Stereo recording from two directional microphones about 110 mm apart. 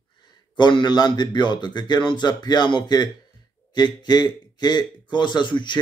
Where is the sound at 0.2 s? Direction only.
45° left (ahead or behind).